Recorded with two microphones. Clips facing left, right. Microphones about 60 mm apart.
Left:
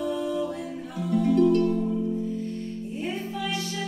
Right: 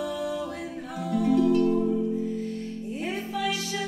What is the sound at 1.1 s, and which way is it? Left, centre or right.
Music, centre.